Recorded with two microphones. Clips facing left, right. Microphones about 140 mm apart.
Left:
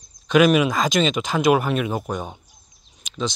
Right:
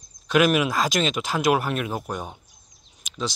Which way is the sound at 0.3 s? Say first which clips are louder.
Left 4 dB; 5° right (ahead or behind).